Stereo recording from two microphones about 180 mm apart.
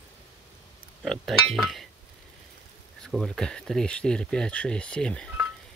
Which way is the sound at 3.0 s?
Centre (ahead or behind).